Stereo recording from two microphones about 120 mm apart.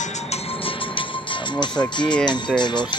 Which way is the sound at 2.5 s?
40° left (ahead or behind).